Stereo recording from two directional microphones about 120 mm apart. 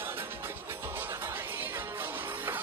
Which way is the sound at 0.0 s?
15° right (ahead or behind).